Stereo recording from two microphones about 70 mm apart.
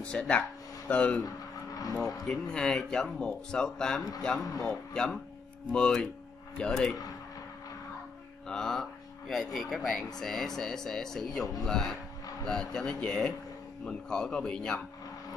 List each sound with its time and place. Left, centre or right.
0.0 s speech: centre
1.2 s a sound: left
2.0 s speech: centre
8.5 s speech: centre